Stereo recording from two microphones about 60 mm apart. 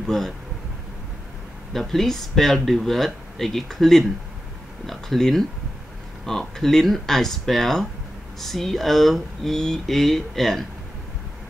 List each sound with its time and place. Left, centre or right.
0.0 s speech: centre
1.7 s speech: centre